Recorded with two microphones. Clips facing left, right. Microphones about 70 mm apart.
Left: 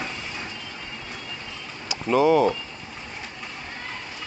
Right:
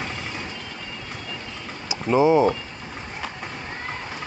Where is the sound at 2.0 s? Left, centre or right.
Centre.